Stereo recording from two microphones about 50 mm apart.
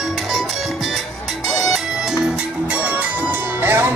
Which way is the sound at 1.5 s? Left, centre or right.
Centre.